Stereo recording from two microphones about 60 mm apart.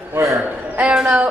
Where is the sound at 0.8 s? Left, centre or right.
Centre.